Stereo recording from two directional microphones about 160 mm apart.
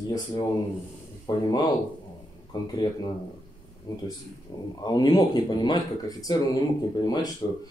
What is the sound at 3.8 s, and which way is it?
Speech, 30° left (ahead or behind).